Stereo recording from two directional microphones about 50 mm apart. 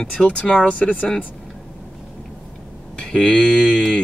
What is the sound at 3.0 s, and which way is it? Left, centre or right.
Speech, centre.